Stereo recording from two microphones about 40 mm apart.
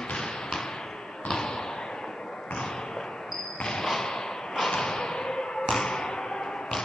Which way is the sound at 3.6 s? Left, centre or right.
Centre.